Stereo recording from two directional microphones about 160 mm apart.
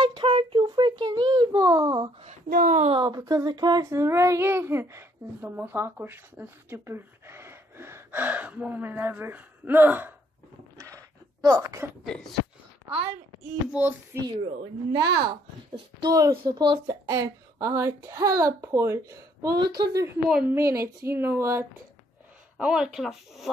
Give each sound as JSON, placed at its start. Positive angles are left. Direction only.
{"t": 0.0, "sound": "a sound", "side_deg": -30}
{"t": 2.5, "sound": "speech", "side_deg": -60}
{"t": 2.9, "sound": "child singing", "side_deg": -25}
{"t": 10.8, "sound": "a sound", "side_deg": -20}
{"t": 12.0, "sound": "speech", "side_deg": 0}
{"t": 13.8, "sound": "child singing", "side_deg": -5}
{"t": 14.3, "sound": "a woman's voice", "side_deg": -25}
{"t": 20.5, "sound": "child singing", "side_deg": -15}
{"t": 22.6, "sound": "speech", "side_deg": -5}